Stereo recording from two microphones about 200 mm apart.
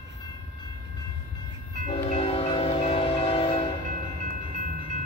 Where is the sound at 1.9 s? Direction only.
30° left (ahead or behind).